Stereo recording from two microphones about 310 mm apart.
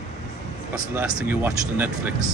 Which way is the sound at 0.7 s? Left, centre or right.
Centre.